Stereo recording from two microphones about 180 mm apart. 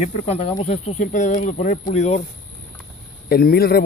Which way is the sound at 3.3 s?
55° left (ahead or behind).